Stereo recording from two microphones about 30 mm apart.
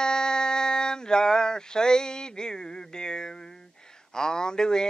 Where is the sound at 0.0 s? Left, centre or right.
Left.